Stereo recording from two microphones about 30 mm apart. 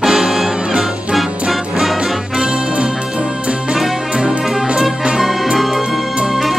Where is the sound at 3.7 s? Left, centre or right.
Centre.